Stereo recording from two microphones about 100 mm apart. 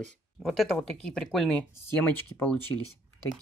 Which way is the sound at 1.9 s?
25° left (ahead or behind).